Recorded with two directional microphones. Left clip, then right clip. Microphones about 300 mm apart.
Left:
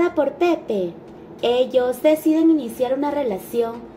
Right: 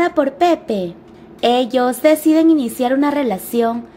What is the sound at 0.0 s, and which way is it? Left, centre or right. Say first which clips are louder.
Speech: right 4 dB; right.